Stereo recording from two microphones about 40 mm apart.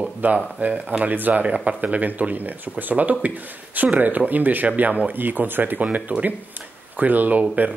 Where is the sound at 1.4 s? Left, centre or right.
Right.